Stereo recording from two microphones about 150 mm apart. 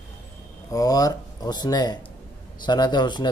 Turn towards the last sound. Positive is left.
turn(degrees=30)  # may be behind; listen again after turning